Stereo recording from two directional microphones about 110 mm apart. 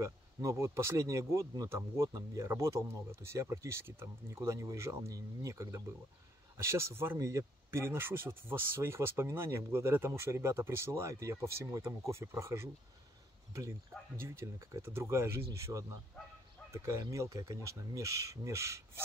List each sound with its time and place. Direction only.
0.0 s speech: 30° right (ahead or behind)